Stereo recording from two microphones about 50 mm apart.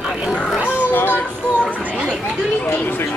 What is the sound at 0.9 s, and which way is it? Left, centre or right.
Music, left.